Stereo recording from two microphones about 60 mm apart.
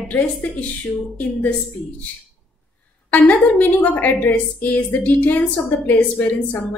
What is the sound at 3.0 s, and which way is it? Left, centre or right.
A woman's voice, left.